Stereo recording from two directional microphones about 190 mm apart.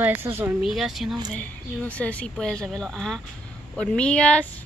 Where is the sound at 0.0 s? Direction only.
10° right (ahead or behind).